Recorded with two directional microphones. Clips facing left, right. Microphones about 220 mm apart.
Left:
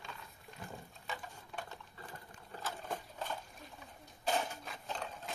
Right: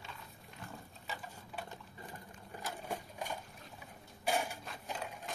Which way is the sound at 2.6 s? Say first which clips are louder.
Even; 15° right (ahead or behind).